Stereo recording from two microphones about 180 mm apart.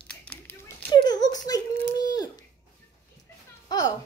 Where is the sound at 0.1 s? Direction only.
5° left (ahead or behind).